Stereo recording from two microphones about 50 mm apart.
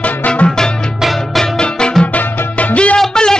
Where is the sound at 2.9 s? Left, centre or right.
Centre.